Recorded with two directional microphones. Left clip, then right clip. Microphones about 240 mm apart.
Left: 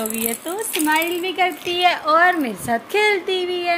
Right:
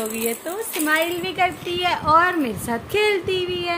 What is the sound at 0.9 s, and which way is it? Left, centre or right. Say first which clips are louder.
A woman's voice: left 1 dB; centre.